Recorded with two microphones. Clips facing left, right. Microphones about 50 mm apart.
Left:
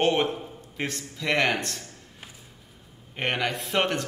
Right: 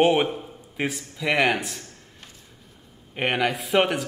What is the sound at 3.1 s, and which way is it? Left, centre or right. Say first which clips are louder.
Speech: right 4 dB; centre.